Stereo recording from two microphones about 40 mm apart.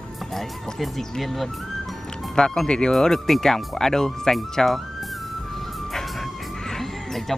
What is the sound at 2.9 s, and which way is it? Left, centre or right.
Speech, centre.